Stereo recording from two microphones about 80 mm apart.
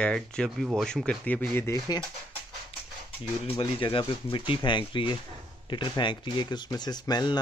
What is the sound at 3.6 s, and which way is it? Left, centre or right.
Speech, left.